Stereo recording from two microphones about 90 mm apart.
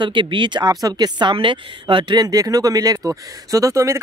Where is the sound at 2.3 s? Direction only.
40° right (ahead or behind).